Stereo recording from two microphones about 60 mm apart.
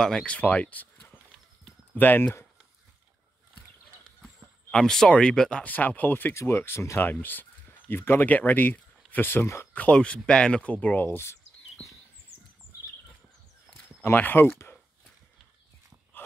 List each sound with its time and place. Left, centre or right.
0.0 s speech: centre
0.3 s speech: left
4.6 s speech: centre
5.7 s speech: left
6.3 s speech: left
7.0 s speech: left
9.8 s speech: centre
11.8 s a sound: centre
14.1 s speech: left